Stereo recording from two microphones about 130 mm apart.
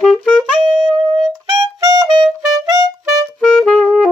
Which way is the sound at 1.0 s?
30° right (ahead or behind).